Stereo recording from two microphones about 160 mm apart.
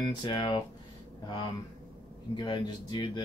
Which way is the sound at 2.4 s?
25° left (ahead or behind).